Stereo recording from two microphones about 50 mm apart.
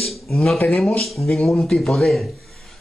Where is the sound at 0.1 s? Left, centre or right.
Centre.